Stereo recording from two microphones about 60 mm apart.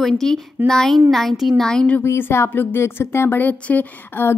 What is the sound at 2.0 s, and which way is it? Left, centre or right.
Speech, left.